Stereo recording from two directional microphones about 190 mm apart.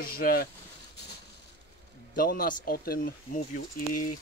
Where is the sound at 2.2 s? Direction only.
50° left (ahead or behind).